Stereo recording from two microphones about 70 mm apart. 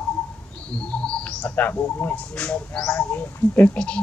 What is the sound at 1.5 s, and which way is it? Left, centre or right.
Speech, left.